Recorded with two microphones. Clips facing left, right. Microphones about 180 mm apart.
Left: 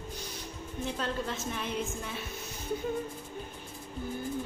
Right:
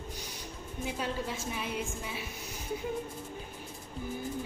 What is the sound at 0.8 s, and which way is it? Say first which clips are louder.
A woman's voice: left 1 dB; 10° right (ahead or behind).